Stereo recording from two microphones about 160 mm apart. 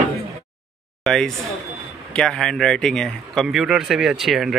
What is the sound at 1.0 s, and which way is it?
Speech, 5° left (ahead or behind).